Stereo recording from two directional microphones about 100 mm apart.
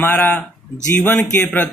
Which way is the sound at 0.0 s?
20° left (ahead or behind).